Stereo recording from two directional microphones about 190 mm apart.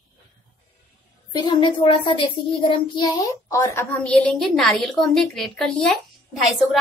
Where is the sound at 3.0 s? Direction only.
15° left (ahead or behind).